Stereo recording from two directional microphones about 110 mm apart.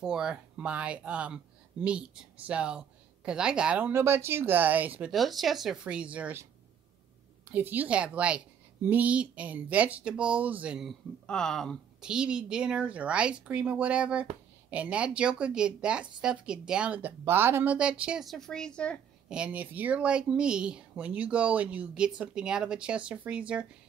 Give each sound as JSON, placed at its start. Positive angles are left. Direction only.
{"t": 0.0, "sound": "speech", "side_deg": -5}
{"t": 3.9, "sound": "speech", "side_deg": -25}
{"t": 5.1, "sound": "speech", "side_deg": 0}
{"t": 7.4, "sound": "speech", "side_deg": -15}
{"t": 11.2, "sound": "speech", "side_deg": 5}
{"t": 12.0, "sound": "speech", "side_deg": -5}
{"t": 17.7, "sound": "speech", "side_deg": -10}
{"t": 18.2, "sound": "speech", "side_deg": 5}
{"t": 19.2, "sound": "speech", "side_deg": -10}